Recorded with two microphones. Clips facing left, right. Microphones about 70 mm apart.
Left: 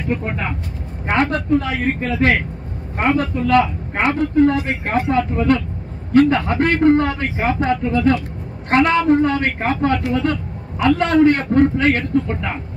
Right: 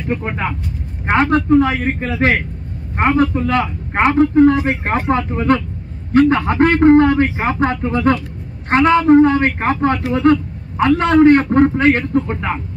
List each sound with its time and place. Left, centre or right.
1.1 s speech: right
3.3 s a man's voice: right